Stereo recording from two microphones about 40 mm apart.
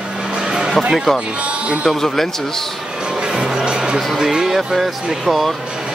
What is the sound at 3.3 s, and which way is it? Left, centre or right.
Music, centre.